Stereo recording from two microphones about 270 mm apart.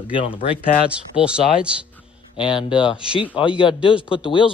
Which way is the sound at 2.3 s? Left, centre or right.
Centre.